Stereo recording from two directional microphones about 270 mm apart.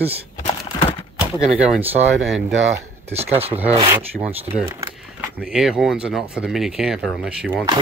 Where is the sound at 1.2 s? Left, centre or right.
Centre.